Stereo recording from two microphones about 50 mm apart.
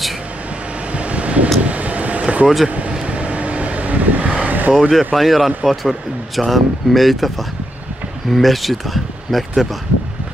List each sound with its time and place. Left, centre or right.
0.9 s vehicle: right
2.4 s speech: centre
3.1 s vehicle: right
4.5 s vehicle: right
4.7 s speech: centre